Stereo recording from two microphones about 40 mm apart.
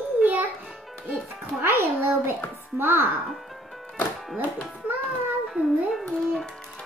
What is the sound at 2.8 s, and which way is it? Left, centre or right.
Speech, right.